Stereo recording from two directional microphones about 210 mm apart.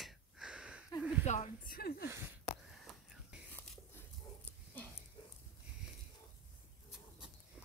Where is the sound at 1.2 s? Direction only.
35° left (ahead or behind).